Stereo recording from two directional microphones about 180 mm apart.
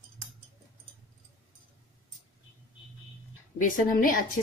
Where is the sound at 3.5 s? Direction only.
50° left (ahead or behind).